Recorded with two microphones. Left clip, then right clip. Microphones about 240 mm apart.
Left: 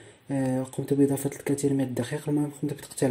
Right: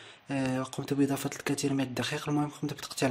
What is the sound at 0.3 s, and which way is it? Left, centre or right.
Speech, centre.